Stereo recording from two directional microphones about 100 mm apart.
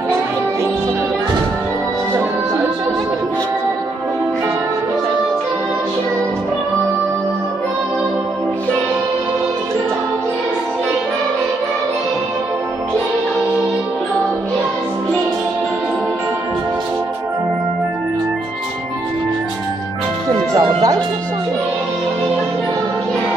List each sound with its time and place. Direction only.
20.5 s music: 35° right (ahead or behind)